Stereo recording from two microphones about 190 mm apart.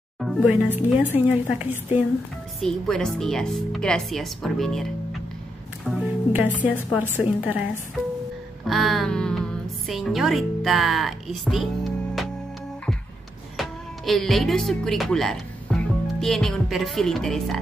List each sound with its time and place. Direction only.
0.2 s a woman's voice: centre (ahead or behind)
2.6 s speech: 5° left (ahead or behind)
5.9 s music: 10° right (ahead or behind)
6.9 s a woman's voice: 10° right (ahead or behind)
8.6 s a woman's voice: centre (ahead or behind)
13.6 s speech: centre (ahead or behind)